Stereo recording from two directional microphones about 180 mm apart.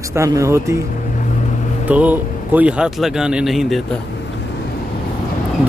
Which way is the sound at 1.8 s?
10° right (ahead or behind).